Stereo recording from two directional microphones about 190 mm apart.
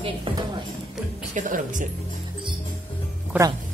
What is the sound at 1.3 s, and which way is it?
Music, 45° right (ahead or behind).